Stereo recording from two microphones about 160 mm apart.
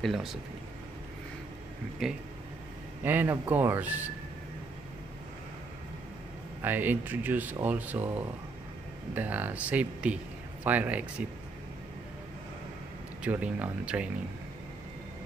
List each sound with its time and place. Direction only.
0.0 s speech: centre (ahead or behind)
2.0 s speech: centre (ahead or behind)
6.6 s speech: 10° right (ahead or behind)
13.2 s speech: 10° right (ahead or behind)